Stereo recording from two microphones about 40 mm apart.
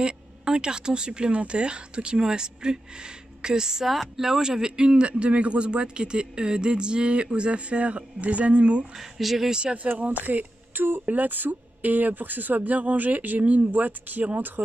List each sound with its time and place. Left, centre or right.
0.0 s speech: right
8.9 s speech: centre
9.5 s speech: right
9.8 s speech: right